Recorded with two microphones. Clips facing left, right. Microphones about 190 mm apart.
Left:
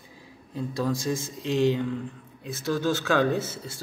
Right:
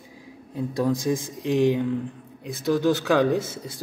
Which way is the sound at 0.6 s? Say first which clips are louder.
Right 4 dB; 15° right (ahead or behind).